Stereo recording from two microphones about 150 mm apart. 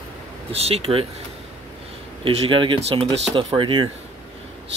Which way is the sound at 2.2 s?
35° right (ahead or behind).